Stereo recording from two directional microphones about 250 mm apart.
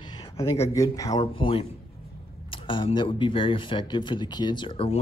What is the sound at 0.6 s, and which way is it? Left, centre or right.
Speech, centre.